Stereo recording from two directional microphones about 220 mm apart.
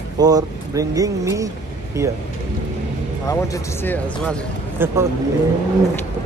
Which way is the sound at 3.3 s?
10° left (ahead or behind).